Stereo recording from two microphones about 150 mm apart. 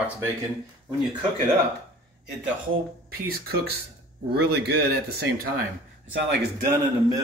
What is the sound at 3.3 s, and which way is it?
Speech, 90° right.